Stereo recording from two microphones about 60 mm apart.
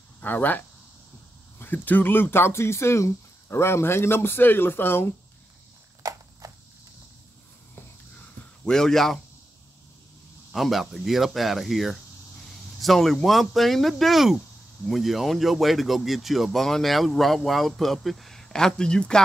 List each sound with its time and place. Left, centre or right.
0.2 s speech: left
6.0 s a sound: right
6.4 s insect: right
8.6 s speech: centre
10.5 s speech: centre